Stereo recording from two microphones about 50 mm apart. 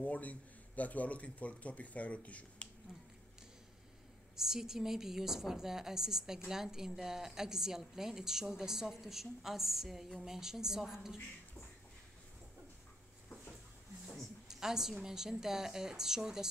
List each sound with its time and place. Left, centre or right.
0.0 s speech: left
2.9 s finger snapping: centre
4.4 s a woman's voice: centre
14.0 s a sound: centre
14.5 s a woman's voice: centre